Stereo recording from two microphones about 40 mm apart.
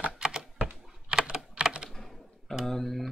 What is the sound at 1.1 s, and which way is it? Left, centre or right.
Typing, right.